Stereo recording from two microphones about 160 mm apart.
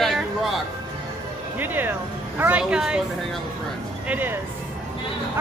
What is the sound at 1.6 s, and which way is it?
Speech, 10° right (ahead or behind).